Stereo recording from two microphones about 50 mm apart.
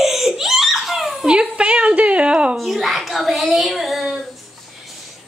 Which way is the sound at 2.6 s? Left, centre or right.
Centre.